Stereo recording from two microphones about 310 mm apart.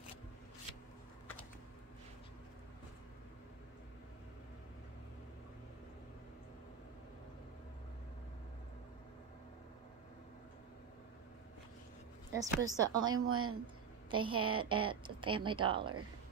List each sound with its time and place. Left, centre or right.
12.3 s speech: centre
13.0 s a woman's voice: right
14.1 s speech: centre